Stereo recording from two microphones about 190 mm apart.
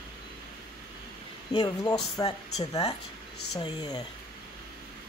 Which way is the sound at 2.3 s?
35° left (ahead or behind).